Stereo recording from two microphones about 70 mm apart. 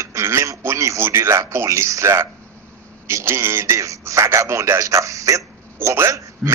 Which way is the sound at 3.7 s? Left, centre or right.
Right.